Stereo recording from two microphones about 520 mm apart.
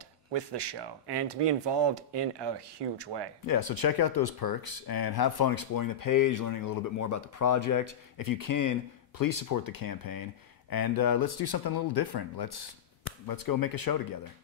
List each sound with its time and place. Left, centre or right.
0.3 s speech: right
3.4 s speech: left